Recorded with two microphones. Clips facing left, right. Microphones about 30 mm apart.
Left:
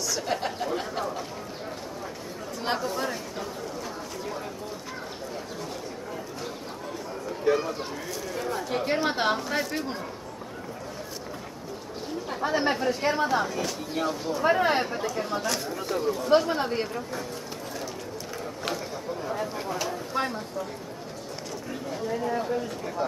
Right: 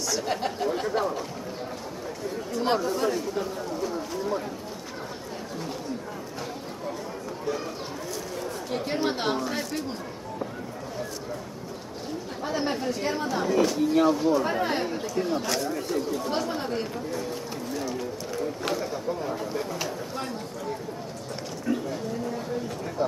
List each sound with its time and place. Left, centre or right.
0.0 s a sound: centre
2.5 s speech: centre
7.5 s a sound: left
8.4 s chatter: left
8.6 s speech: centre
12.4 s speech: centre
13.5 s speech: centre
14.4 s speech: centre
16.3 s speech: left
17.7 s a sound: centre
21.7 s speech: centre
23.0 s speech: centre